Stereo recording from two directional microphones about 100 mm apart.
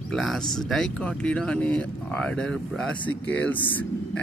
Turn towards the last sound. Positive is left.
turn(degrees=15)  # may be behind; listen again after turning